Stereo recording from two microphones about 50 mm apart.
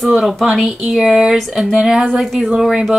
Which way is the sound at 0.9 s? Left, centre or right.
Centre.